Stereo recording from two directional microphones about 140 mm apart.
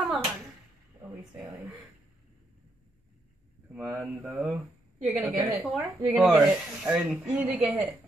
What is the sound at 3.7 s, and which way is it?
Speech, centre (ahead or behind).